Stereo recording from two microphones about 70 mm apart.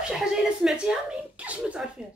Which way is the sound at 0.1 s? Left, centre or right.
Centre.